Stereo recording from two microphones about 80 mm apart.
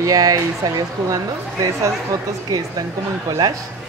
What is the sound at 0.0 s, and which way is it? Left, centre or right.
Speech, right.